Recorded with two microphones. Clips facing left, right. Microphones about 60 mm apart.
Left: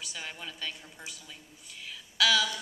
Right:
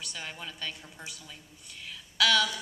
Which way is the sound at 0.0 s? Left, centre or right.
Centre.